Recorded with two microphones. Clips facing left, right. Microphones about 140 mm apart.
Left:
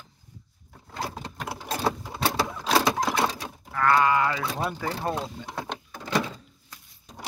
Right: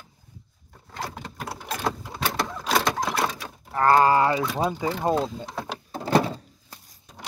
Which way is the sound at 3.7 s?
35° right (ahead or behind).